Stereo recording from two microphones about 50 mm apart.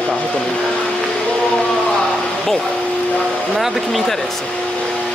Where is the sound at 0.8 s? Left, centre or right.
Centre.